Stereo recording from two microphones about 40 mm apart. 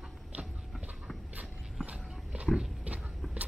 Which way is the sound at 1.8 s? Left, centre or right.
Right.